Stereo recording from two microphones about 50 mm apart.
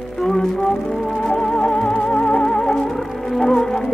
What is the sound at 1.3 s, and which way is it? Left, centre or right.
Music, centre.